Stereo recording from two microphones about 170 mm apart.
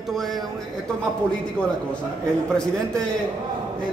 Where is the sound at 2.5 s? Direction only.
5° left (ahead or behind).